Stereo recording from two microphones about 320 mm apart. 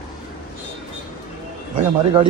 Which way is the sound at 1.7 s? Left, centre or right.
Centre.